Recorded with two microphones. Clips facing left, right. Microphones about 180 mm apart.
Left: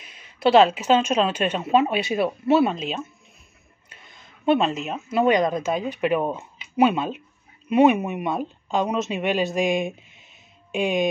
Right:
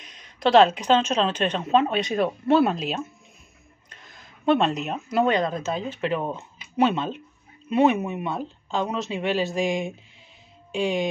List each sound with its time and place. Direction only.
0.0 s speech: 5° left (ahead or behind)
3.9 s a sound: centre (ahead or behind)
5.2 s speech: 15° left (ahead or behind)